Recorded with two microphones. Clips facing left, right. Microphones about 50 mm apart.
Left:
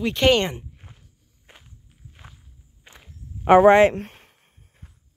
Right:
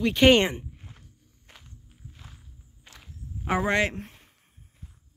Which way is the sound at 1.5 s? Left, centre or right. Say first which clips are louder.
Left 1 dB; left.